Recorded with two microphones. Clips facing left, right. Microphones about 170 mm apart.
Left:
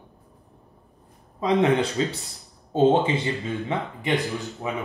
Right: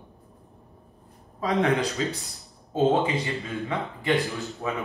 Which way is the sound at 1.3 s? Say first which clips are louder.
Left 3 dB; 20° left (ahead or behind).